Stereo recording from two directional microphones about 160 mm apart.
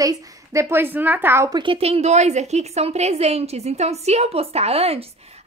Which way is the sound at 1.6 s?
35° right (ahead or behind).